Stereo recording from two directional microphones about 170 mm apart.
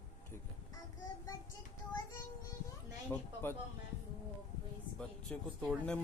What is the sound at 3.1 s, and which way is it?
Speech, 15° left (ahead or behind).